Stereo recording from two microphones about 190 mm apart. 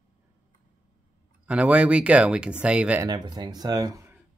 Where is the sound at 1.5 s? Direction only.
5° right (ahead or behind).